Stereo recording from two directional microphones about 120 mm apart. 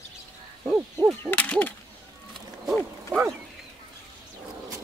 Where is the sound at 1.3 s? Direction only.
15° left (ahead or behind).